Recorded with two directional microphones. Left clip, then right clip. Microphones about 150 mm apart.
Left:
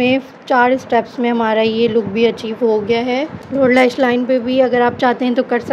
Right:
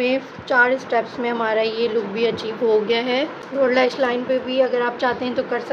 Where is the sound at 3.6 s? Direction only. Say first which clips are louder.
Left 6 dB; 55° left (ahead or behind).